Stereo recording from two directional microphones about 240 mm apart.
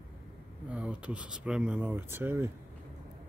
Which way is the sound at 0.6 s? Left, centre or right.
Centre.